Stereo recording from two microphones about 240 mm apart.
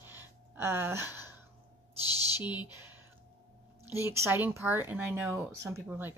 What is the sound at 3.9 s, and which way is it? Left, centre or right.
A woman's voice, centre.